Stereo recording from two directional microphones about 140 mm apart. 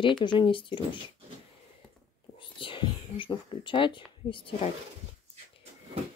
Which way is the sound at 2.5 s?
35° left (ahead or behind).